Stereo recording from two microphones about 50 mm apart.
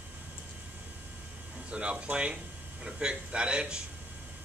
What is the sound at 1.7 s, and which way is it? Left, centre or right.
A man's voice, right.